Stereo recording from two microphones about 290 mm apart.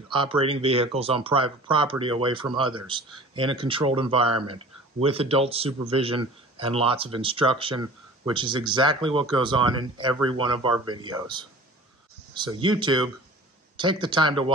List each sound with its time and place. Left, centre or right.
0.1 s speech: centre